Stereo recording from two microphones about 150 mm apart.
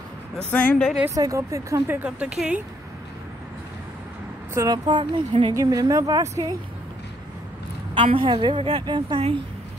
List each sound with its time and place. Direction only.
0.5 s speech: 10° left (ahead or behind)
1.1 s a woman's voice: 20° right (ahead or behind)
2.0 s speech: 5° right (ahead or behind)
4.6 s a woman's voice: 30° right (ahead or behind)
5.5 s a woman's voice: 20° right (ahead or behind)
7.9 s a woman's voice: 35° right (ahead or behind)